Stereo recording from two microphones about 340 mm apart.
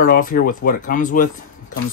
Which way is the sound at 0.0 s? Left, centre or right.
Left.